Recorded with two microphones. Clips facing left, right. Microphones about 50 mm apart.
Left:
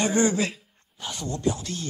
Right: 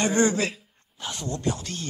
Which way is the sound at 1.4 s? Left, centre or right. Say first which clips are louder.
Left 4 dB; right.